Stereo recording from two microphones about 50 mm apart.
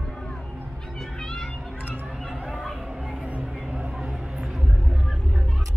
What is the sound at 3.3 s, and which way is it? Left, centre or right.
Music, right.